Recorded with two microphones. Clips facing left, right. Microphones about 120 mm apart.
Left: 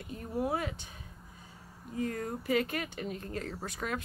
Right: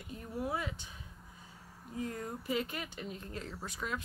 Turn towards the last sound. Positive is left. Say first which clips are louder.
# left 3 dB
turn(degrees=55)  # may be behind; listen again after turning